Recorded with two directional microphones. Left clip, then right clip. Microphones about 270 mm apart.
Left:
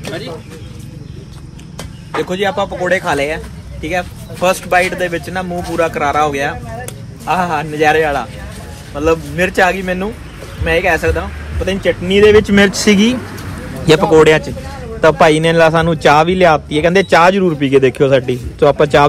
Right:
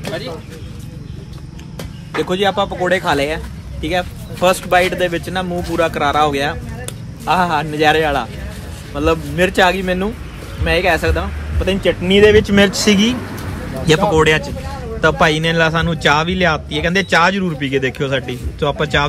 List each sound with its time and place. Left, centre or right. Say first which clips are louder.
2.2 s a man's voice: right 1 dB; centre
12.1 s a man's voice: left 2 dB; right; by 19.0 s centre